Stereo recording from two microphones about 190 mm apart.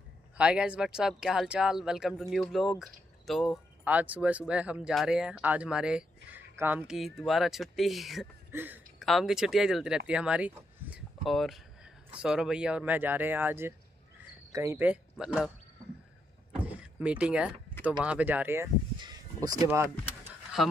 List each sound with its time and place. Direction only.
0.4 s speech: 5° right (ahead or behind)
16.6 s power windows: 5° right (ahead or behind)
18.0 s speech: 5° right (ahead or behind)
18.9 s a sound: 20° right (ahead or behind)
20.6 s speech: centre (ahead or behind)